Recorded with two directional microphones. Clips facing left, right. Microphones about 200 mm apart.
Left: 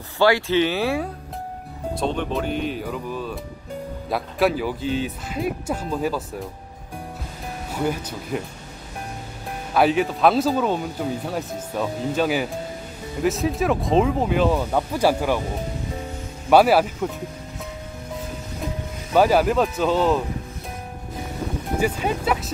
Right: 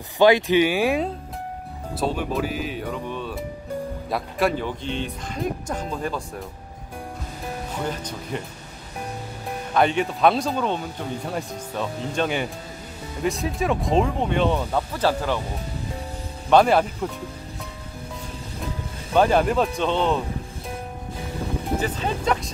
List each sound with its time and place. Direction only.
0.2 s speech: 15° right (ahead or behind)
2.0 s speech: 5° right (ahead or behind)
7.8 s speech: 10° left (ahead or behind)
9.8 s speech: centre (ahead or behind)
16.4 s speech: 5° left (ahead or behind)
19.1 s speech: 5° left (ahead or behind)
21.7 s speech: 10° left (ahead or behind)